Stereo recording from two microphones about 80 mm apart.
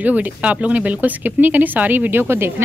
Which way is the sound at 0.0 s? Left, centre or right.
Centre.